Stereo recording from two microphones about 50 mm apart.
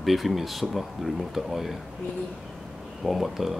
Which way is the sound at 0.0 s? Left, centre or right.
Centre.